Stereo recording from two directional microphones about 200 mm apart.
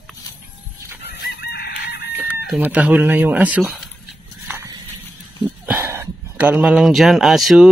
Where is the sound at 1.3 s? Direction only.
55° left (ahead or behind).